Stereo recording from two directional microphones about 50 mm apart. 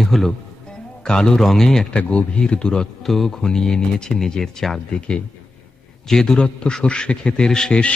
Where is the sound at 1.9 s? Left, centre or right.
Left.